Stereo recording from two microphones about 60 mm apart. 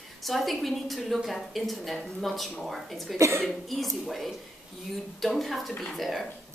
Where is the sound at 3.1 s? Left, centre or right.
Right.